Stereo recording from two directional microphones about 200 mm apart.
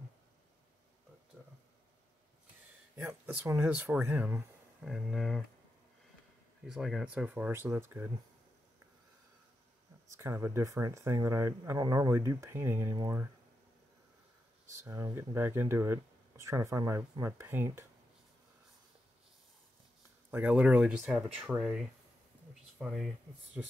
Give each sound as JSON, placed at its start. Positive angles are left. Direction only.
{"t": 1.3, "sound": "a sound", "side_deg": -10}
{"t": 3.0, "sound": "speech", "side_deg": -5}
{"t": 6.6, "sound": "speech", "side_deg": 0}
{"t": 10.1, "sound": "speech", "side_deg": -10}
{"t": 14.7, "sound": "speech", "side_deg": -15}
{"t": 20.2, "sound": "speech", "side_deg": -10}